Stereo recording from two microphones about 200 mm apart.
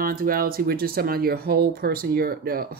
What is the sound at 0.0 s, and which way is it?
Speech, 45° right (ahead or behind).